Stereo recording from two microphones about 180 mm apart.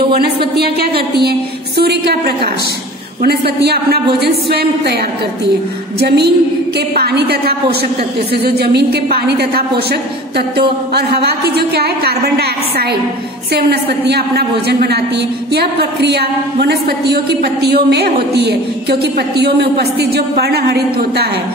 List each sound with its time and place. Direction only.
0.6 s a woman's voice: 60° right (ahead or behind)
5.9 s a woman's voice: 65° right (ahead or behind)